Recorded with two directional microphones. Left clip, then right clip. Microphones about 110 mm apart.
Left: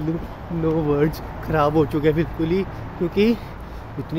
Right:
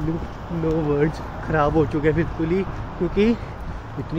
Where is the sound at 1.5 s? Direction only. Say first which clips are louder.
Left 1 dB; 20° left (ahead or behind).